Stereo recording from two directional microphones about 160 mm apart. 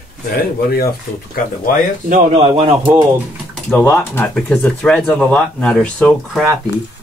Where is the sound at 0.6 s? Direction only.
70° left (ahead or behind).